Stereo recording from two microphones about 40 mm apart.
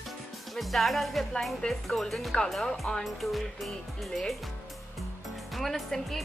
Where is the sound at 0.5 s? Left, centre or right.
Centre.